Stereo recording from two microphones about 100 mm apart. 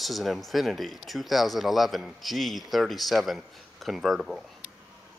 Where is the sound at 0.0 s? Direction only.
Centre (ahead or behind).